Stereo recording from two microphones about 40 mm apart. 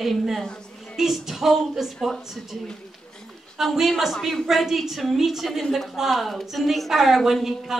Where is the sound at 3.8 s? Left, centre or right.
Centre.